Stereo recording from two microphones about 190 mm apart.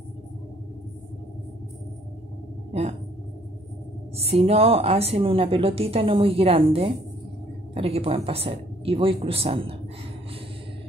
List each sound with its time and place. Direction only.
2.7 s speech: 35° right (ahead or behind)
4.2 s a woman's voice: 30° right (ahead or behind)